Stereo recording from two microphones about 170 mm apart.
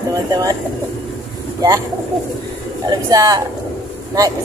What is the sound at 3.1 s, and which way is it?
Speech, 20° right (ahead or behind).